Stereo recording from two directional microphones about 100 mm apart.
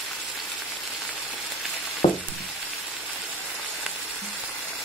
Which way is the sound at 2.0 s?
90° left.